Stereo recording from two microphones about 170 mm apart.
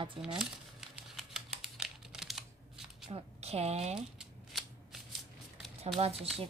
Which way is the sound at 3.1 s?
40° right (ahead or behind).